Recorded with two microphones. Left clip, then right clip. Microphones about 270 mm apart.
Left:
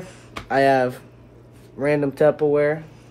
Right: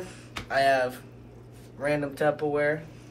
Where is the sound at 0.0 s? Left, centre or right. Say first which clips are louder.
Left 2 dB; left.